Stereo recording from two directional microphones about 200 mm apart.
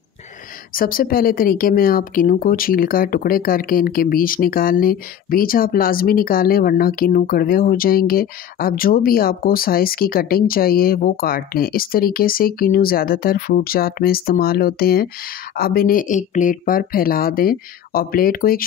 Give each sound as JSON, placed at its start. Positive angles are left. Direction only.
{"t": 0.7, "sound": "speech", "side_deg": 45}